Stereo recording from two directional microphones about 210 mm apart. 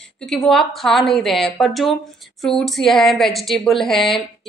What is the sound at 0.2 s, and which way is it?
A woman's voice, centre (ahead or behind).